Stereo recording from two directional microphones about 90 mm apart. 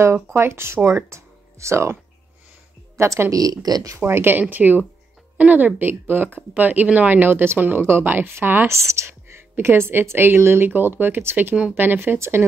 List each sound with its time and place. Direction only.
0.0 s speech: 30° right (ahead or behind)
3.0 s a woman's voice: 30° right (ahead or behind)
4.0 s speech: 25° right (ahead or behind)